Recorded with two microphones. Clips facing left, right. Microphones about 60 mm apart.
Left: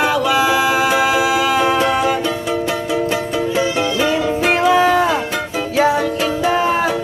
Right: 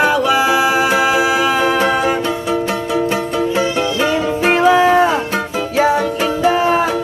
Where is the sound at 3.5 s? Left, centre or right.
Right.